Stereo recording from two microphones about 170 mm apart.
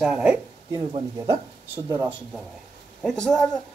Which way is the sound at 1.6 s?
15° right (ahead or behind).